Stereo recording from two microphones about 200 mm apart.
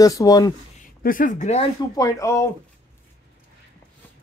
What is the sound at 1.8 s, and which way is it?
Speech, 15° left (ahead or behind).